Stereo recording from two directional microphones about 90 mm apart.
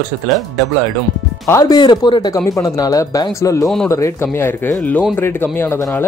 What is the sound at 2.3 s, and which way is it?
Speech, 40° left (ahead or behind).